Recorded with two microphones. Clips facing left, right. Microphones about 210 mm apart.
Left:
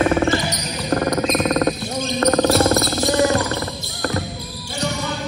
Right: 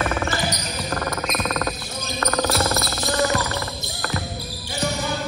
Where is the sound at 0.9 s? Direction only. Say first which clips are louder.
Left 9 dB; 25° left (ahead or behind).